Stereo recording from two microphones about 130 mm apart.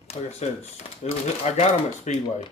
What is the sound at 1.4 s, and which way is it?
Speech, 60° left (ahead or behind).